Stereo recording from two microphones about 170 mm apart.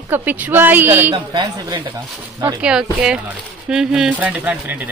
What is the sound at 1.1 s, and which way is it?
Speech, 25° right (ahead or behind).